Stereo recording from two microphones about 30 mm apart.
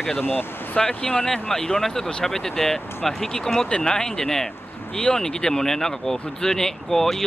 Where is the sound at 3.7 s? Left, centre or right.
Left; by 7.2 s centre.